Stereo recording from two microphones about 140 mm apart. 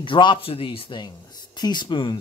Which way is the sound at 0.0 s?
35° left (ahead or behind).